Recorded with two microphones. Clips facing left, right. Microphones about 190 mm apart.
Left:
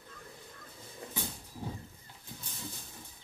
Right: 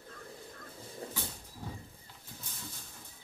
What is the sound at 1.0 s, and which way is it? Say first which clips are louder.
Vehicle: right 1 dB; 35° right (ahead or behind).